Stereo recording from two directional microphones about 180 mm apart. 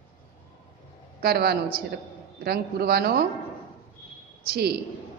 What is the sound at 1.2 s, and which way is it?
A man's voice, 60° right (ahead or behind).